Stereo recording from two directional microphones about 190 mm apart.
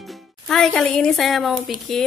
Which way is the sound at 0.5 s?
Centre (ahead or behind).